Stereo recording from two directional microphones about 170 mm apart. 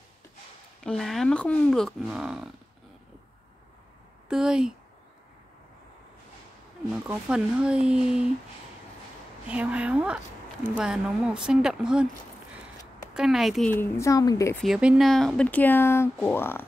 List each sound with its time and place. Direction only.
0.8 s speech: centre (ahead or behind)
4.3 s speech: 5° right (ahead or behind)
6.9 s speech: 5° right (ahead or behind)
9.5 s speech: 10° right (ahead or behind)
13.1 s speech: 5° right (ahead or behind)
13.7 s speech: 15° left (ahead or behind)
14.6 s speech: 5° right (ahead or behind); by 16.6 s 15° left (ahead or behind)